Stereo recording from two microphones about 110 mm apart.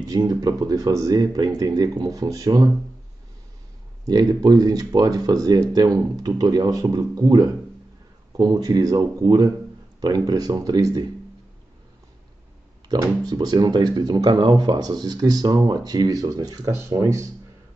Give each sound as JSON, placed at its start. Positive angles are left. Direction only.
{"t": 0.0, "sound": "speech", "side_deg": -35}
{"t": 4.0, "sound": "speech", "side_deg": -35}
{"t": 12.9, "sound": "speech", "side_deg": -35}